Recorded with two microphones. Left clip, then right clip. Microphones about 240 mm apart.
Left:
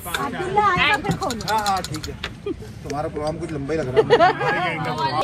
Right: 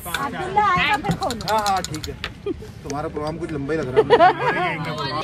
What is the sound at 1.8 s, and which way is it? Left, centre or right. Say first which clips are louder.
Speech: right 1 dB; centre.